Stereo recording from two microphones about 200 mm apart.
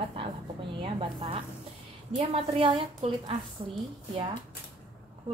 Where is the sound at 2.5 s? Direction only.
30° right (ahead or behind).